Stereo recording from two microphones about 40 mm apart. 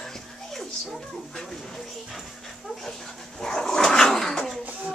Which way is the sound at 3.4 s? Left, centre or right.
Centre.